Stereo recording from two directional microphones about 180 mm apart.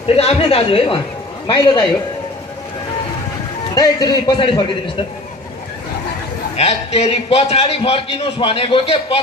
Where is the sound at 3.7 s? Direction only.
20° left (ahead or behind).